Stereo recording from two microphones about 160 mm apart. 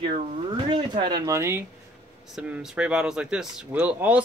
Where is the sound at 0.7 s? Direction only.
30° right (ahead or behind).